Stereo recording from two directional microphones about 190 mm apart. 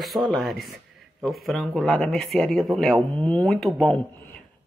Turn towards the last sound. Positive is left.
turn(degrees=0)  # may be behind; listen again after turning